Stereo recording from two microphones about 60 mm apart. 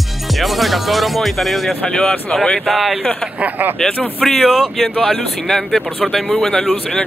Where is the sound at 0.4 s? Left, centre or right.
Centre.